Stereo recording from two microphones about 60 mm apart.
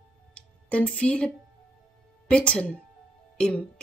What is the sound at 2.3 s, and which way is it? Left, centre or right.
A woman's voice, centre.